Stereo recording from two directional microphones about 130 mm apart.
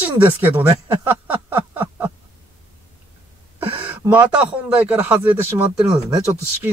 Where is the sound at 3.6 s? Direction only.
15° right (ahead or behind).